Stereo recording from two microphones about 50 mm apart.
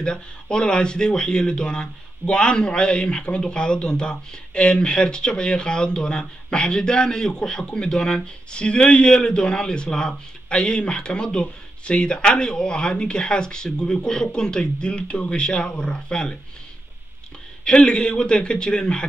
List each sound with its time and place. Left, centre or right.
0.0 s speech: centre
17.6 s speech: centre